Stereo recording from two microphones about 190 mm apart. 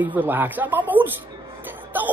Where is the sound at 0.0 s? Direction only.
10° right (ahead or behind).